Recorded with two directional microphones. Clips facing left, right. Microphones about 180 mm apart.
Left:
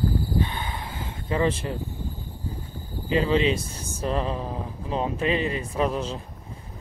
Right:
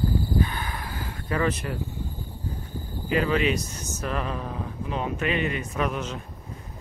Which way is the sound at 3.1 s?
25° left (ahead or behind).